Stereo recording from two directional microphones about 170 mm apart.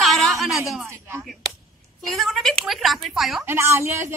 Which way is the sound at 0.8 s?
15° right (ahead or behind).